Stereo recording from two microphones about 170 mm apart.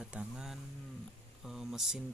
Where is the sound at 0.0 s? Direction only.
5° right (ahead or behind).